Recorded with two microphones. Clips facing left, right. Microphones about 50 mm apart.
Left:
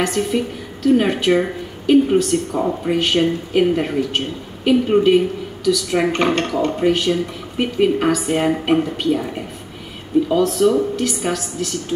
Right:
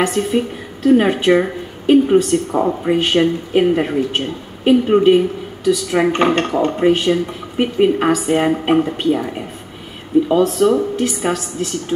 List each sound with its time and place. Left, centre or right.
0.0 s a woman's voice: right